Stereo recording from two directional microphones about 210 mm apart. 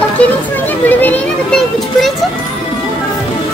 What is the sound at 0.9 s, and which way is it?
Speech, 10° left (ahead or behind).